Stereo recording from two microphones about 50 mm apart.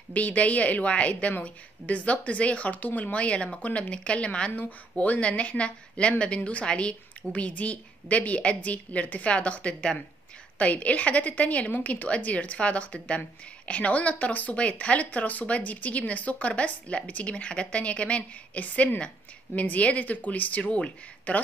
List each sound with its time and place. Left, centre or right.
0.1 s speech: left